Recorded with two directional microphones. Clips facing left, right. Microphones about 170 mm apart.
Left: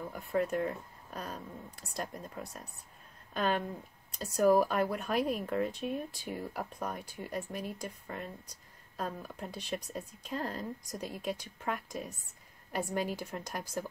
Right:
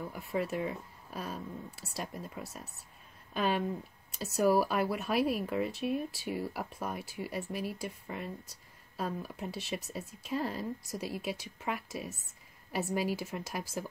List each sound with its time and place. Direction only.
0.1 s speech: centre (ahead or behind)